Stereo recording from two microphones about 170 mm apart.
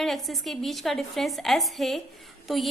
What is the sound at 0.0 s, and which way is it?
A woman's voice, centre (ahead or behind).